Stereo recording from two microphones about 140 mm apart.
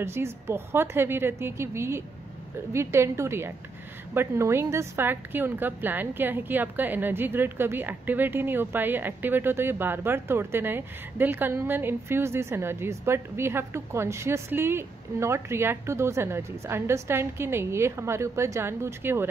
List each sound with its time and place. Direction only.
0.0 s a woman's voice: 20° right (ahead or behind)